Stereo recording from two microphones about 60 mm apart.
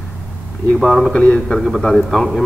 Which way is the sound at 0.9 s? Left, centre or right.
Centre.